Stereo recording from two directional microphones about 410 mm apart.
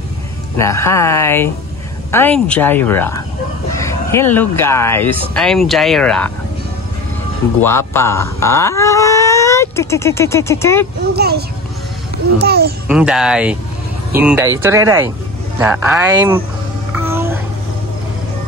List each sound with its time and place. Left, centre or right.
0.6 s speech: centre
7.6 s speech: centre
11.1 s a child's voice: right
12.8 s speech: centre
17.0 s a sound: centre